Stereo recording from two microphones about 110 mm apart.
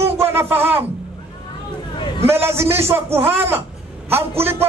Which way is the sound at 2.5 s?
20° right (ahead or behind).